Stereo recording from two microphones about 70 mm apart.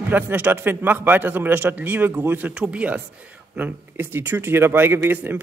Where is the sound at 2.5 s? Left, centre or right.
Centre.